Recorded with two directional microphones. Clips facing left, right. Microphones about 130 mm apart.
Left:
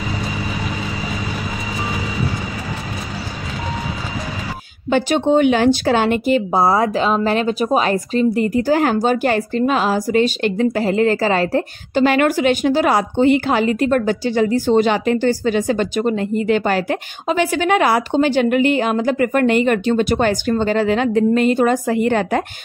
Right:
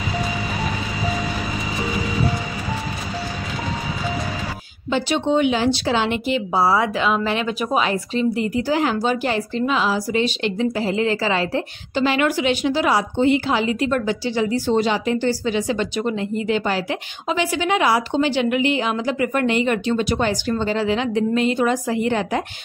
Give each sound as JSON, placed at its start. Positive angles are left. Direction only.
{"t": 4.9, "sound": "speech", "side_deg": 50}